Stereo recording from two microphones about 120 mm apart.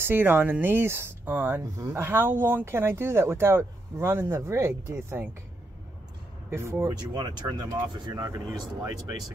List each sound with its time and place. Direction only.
0.0 s speech: 20° right (ahead or behind)
6.5 s speech: 25° right (ahead or behind)